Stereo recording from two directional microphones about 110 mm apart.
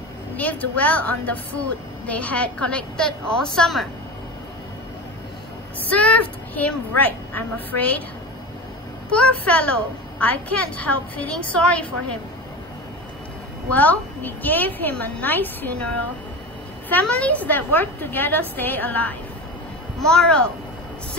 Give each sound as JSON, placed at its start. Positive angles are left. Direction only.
{"t": 0.4, "sound": "a woman's voice", "side_deg": 15}
{"t": 5.9, "sound": "a woman's voice", "side_deg": 10}
{"t": 9.1, "sound": "a woman's voice", "side_deg": 10}
{"t": 13.7, "sound": "a woman's voice", "side_deg": 15}
{"t": 16.9, "sound": "a woman's voice", "side_deg": 10}